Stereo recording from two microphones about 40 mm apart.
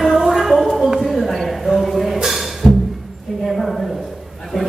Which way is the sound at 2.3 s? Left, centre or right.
Centre.